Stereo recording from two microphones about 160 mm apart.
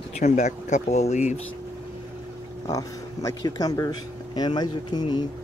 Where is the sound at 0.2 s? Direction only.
50° left (ahead or behind).